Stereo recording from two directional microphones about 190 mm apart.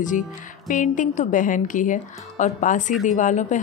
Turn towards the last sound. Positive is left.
turn(degrees=40)  # may be behind; listen again after turning